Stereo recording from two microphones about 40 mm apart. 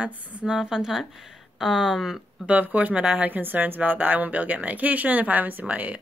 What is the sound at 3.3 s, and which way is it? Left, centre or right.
Speech, right.